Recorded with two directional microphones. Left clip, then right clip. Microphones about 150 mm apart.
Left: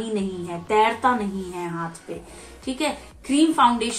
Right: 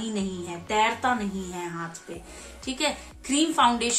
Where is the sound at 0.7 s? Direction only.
20° right (ahead or behind).